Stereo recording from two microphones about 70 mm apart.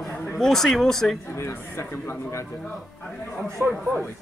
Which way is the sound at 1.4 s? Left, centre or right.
Left.